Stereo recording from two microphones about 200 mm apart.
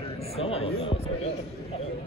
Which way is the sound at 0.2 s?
30° left (ahead or behind).